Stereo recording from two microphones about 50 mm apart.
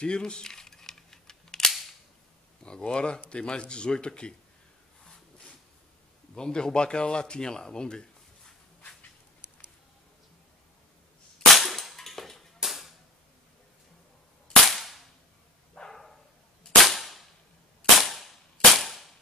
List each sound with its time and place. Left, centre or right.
0.0 s camera: centre
2.6 s speech: centre
6.3 s a man's voice: centre
11.5 s cap gun: centre
12.6 s a sound: centre
14.5 s cap gun: centre
15.7 s dog: centre
16.8 s cap gun: centre